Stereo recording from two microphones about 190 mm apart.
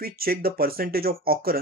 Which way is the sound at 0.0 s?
50° right (ahead or behind).